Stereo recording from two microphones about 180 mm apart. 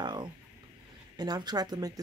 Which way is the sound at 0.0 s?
25° right (ahead or behind).